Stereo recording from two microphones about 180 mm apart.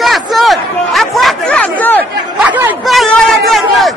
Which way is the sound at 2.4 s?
10° right (ahead or behind).